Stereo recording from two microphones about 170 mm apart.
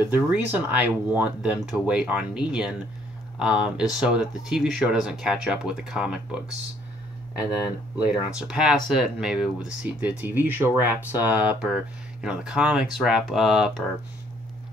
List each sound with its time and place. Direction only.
0.0 s speech: 10° right (ahead or behind)
8.4 s speech: 5° right (ahead or behind)